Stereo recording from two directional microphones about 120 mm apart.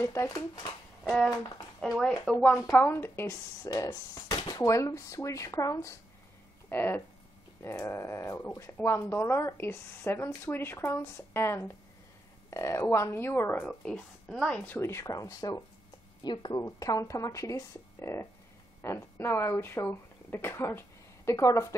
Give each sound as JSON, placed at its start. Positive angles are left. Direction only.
{"t": 0.0, "sound": "speech", "side_deg": 25}
{"t": 1.8, "sound": "a woman's voice", "side_deg": 5}
{"t": 13.7, "sound": "a woman's voice", "side_deg": 5}
{"t": 14.8, "sound": "a woman's voice", "side_deg": 25}